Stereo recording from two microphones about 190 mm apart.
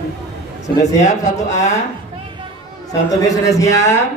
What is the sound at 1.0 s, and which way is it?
Speech, 35° left (ahead or behind).